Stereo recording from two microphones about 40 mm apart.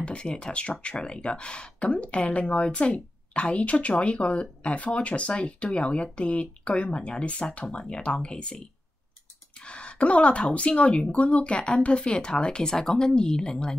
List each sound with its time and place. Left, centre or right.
0.0 s speech: left
7.6 s speech: centre
7.9 s speech: left
9.6 s speech: left